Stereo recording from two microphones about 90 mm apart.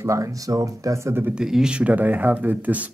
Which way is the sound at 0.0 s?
40° right (ahead or behind).